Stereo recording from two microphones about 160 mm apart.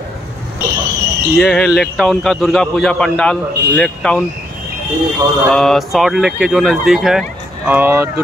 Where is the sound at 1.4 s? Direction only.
Centre (ahead or behind).